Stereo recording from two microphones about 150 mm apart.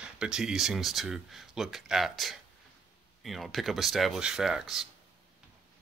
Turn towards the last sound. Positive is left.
turn(degrees=-5)  # may be behind; listen again after turning